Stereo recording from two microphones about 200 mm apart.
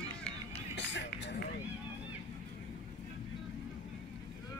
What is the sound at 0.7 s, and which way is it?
Music, 60° left (ahead or behind).